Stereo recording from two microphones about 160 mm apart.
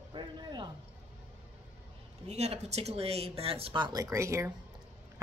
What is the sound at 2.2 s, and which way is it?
Speech, 45° right (ahead or behind).